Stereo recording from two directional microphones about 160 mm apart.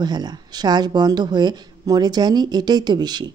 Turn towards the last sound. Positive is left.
turn(degrees=-25)  # may be behind; listen again after turning